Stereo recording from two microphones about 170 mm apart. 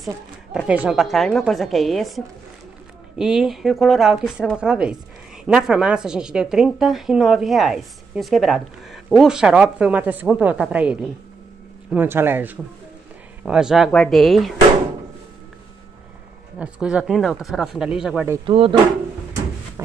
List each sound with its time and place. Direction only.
0.7 s a woman's voice: 5° right (ahead or behind)
16.5 s a woman's voice: 5° right (ahead or behind)
18.4 s speech: 30° right (ahead or behind)